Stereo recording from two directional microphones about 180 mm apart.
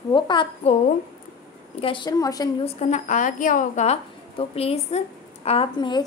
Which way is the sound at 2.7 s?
40° left (ahead or behind).